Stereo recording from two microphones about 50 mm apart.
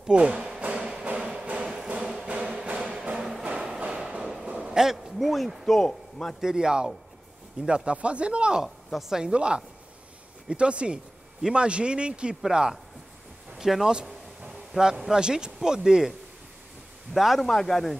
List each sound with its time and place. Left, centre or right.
0.0 s speech: right
0.6 s music: centre
3.2 s music: centre
3.4 s music: right
3.9 s train: centre
4.6 s a sound: centre
5.8 s a man's voice: centre
6.4 s a man's voice: centre
13.9 s a sound: centre
14.8 s a man's voice: centre